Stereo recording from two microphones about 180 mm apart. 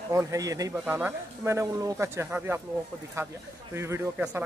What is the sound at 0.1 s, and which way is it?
A man's voice, 15° right (ahead or behind).